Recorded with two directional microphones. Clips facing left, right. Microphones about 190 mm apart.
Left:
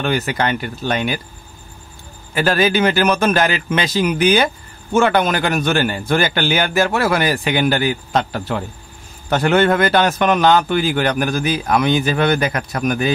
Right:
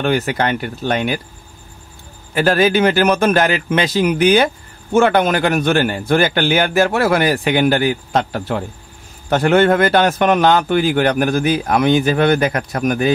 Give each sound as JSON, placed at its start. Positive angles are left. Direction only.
{"t": 0.0, "sound": "a man's voice", "side_deg": -55}
{"t": 2.3, "sound": "a man's voice", "side_deg": -50}